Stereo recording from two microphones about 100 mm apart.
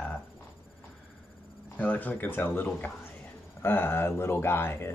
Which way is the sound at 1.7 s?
15° left (ahead or behind).